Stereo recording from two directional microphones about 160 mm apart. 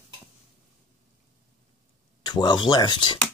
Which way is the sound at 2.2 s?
25° left (ahead or behind).